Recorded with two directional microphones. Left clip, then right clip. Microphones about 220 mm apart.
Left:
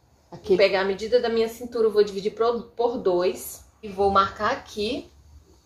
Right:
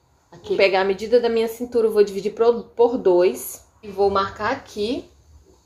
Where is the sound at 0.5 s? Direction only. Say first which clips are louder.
Right 2 dB; 40° right (ahead or behind).